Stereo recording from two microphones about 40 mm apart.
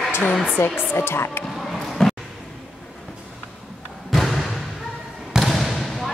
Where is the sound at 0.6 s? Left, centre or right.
Left.